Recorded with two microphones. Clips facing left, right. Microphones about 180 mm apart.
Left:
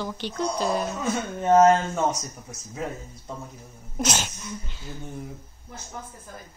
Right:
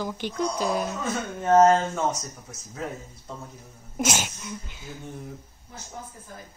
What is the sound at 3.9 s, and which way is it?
Speech, 10° right (ahead or behind).